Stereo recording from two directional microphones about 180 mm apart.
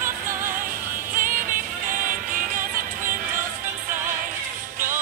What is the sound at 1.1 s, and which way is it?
Music, 50° right (ahead or behind).